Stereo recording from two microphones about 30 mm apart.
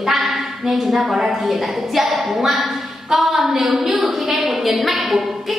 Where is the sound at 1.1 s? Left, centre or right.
Centre.